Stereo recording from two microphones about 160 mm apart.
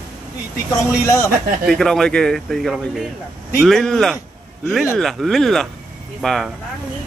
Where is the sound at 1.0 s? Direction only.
20° left (ahead or behind).